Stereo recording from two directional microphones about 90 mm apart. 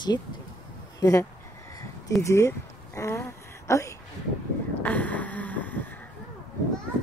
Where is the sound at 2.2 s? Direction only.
30° left (ahead or behind).